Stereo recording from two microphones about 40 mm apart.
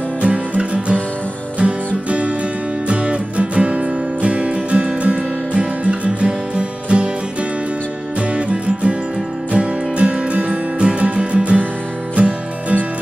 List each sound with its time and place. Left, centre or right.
0.2 s music: right
8.2 s music: right